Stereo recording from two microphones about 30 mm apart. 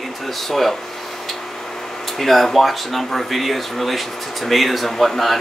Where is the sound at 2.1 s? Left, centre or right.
Centre.